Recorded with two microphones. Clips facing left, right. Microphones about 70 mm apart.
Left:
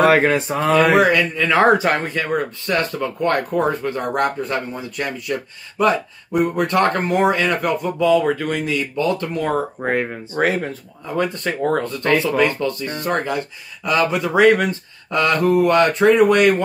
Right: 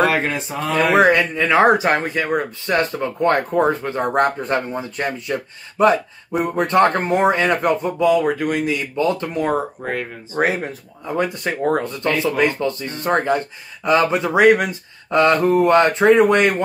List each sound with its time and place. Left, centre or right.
0.1 s speech: left
0.9 s speech: right
9.8 s speech: left
10.3 s speech: centre
15.0 s speech: right